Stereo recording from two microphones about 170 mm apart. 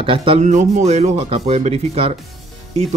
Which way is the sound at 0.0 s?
30° right (ahead or behind).